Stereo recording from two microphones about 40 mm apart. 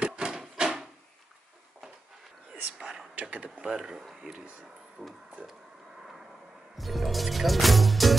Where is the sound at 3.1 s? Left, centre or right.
Right.